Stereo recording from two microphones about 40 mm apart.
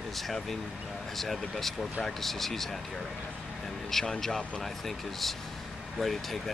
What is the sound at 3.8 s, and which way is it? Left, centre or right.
Speech, centre.